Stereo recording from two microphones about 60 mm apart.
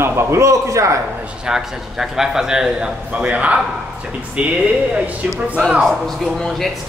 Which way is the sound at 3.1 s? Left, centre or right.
Right.